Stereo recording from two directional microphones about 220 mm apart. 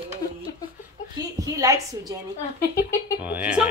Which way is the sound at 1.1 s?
15° right (ahead or behind).